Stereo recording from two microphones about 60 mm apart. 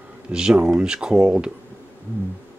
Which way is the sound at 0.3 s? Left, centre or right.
Centre.